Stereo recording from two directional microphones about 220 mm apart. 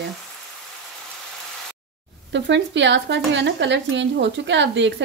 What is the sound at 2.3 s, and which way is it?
A woman's voice, 55° right (ahead or behind).